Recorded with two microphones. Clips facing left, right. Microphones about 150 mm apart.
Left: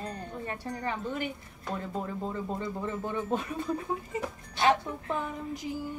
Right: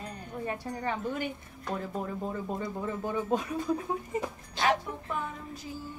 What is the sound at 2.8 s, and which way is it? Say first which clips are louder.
Speech: right 1 dB; 10° right (ahead or behind).